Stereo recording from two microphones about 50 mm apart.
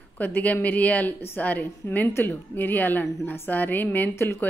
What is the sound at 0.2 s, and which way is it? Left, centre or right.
A woman's voice, left.